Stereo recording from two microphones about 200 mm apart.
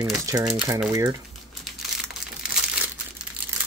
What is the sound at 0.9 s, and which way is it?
Speech, 15° right (ahead or behind).